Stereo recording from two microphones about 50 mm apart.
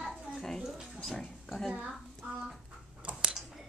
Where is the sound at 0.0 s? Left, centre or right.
Centre.